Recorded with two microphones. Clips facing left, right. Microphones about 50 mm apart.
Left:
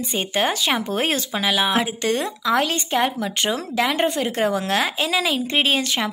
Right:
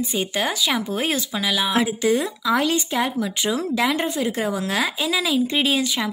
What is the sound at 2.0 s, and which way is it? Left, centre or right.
Speech, left.